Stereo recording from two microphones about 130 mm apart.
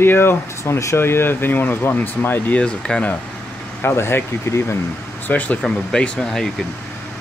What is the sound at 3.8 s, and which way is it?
Speech, 20° left (ahead or behind).